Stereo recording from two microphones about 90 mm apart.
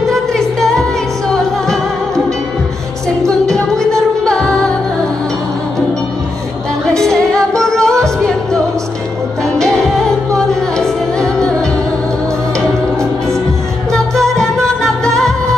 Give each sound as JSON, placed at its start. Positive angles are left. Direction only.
{"t": 0.1, "sound": "music", "side_deg": 5}
{"t": 3.3, "sound": "music", "side_deg": 5}
{"t": 7.0, "sound": "music", "side_deg": 5}
{"t": 9.6, "sound": "music", "side_deg": 5}
{"t": 13.9, "sound": "music", "side_deg": 5}